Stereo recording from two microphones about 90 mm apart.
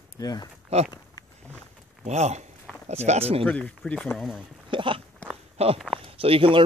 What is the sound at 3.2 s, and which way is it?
Speech, 90° right.